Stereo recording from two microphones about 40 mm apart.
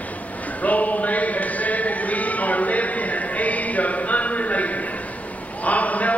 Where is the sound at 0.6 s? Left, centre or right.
Left.